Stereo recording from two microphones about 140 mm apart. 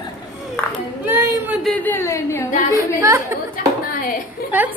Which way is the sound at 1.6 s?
10° left (ahead or behind).